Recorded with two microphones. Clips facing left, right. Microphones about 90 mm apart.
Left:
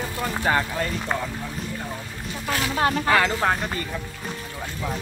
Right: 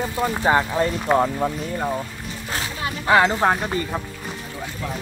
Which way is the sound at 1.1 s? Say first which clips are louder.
Right 10 dB; 55° right (ahead or behind).